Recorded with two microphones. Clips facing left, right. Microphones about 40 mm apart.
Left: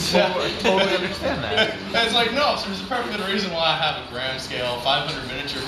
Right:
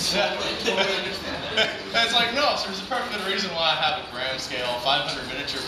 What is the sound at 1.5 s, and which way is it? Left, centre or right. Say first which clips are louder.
A man's voice: even; centre.